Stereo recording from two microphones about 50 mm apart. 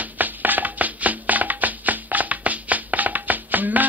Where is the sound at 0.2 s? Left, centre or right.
Right.